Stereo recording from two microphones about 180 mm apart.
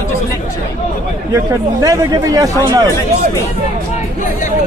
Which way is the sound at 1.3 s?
15° right (ahead or behind).